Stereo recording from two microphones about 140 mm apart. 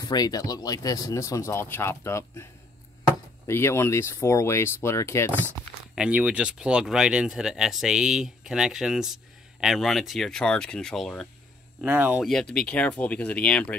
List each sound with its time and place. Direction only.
0.0 s speech: 30° left (ahead or behind)
3.4 s speech: 20° left (ahead or behind)
5.9 s speech: 10° right (ahead or behind)
11.8 s speech: 15° right (ahead or behind)
12.2 s speech: 5° left (ahead or behind)